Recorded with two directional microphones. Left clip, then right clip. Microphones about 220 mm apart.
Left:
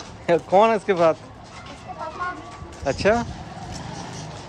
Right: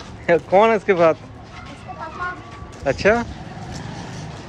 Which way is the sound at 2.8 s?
10° left (ahead or behind).